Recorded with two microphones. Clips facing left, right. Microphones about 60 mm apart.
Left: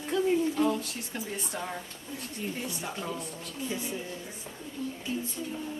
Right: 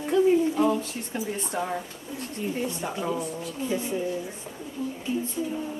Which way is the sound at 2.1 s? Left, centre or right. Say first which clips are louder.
Right 6 dB; centre.